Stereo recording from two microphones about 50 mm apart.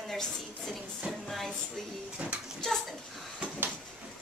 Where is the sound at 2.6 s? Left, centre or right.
Centre.